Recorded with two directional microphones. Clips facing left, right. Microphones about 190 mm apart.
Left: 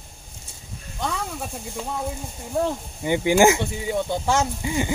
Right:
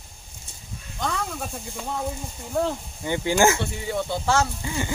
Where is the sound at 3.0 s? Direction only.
15° left (ahead or behind).